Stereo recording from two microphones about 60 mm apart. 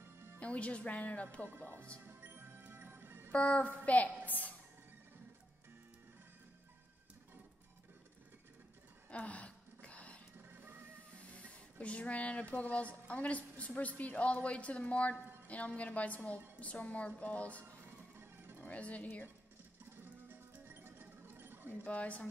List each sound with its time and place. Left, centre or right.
0.0 s music: right
0.4 s a woman's voice: left
2.0 s music: right
3.3 s a woman's voice: left
4.3 s music: left
9.1 s gasp: left
10.5 s music: right
11.1 s a woman's voice: left
17.6 s music: right
18.7 s a woman's voice: left
19.8 s music: right
21.8 s a woman's voice: left